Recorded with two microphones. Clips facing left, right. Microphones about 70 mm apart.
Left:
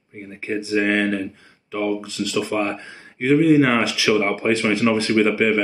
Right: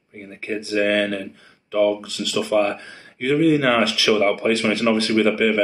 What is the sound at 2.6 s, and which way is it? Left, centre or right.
Speech, centre.